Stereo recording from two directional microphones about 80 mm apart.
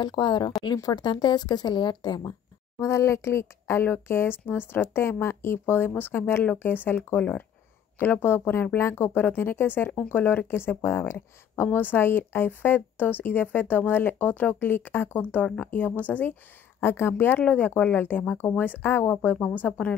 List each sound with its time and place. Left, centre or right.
0.0 s speech: left
0.7 s a woman's voice: left
2.8 s speech: left; by 16.3 s centre
16.8 s speech: left